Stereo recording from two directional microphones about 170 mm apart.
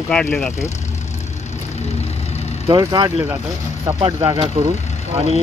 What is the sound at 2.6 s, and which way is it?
Speech, 25° right (ahead or behind).